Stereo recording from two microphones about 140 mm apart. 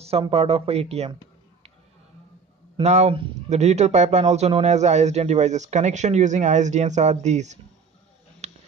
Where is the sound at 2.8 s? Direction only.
50° right (ahead or behind).